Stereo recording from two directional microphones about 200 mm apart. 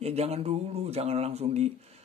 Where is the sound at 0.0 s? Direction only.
30° right (ahead or behind).